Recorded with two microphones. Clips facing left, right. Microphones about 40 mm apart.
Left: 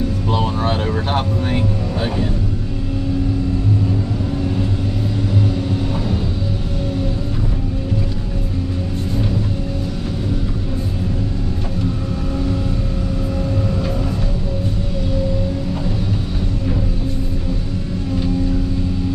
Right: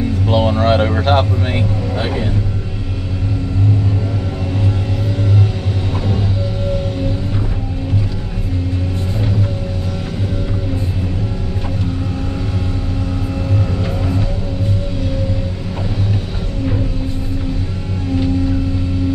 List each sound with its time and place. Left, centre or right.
0.3 s speech: right